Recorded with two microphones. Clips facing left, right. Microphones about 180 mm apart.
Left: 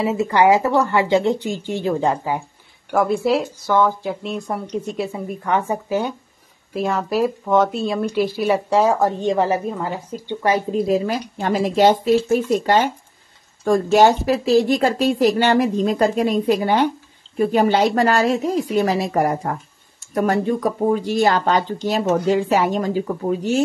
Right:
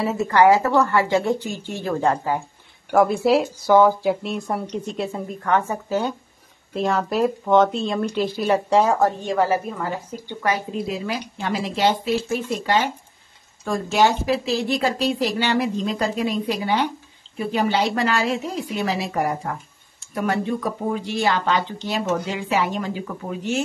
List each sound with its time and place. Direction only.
0.0 s speech: 15° left (ahead or behind)
2.9 s a woman's voice: centre (ahead or behind)
9.0 s speech: 20° left (ahead or behind)
10.7 s speech: 45° left (ahead or behind)